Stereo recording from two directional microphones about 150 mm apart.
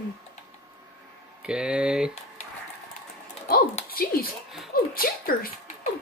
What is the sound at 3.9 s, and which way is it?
Speech, 75° left (ahead or behind).